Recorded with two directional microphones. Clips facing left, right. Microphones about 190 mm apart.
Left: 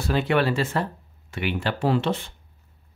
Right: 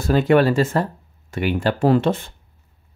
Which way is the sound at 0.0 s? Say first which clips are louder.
Right 7 dB; 45° right (ahead or behind).